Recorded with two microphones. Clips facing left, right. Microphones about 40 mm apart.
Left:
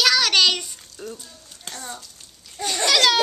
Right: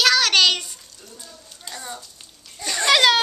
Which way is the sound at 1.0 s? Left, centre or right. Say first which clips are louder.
Left 13 dB; left.